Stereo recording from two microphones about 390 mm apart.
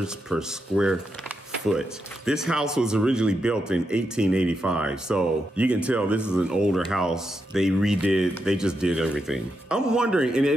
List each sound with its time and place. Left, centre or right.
0.0 s speech: centre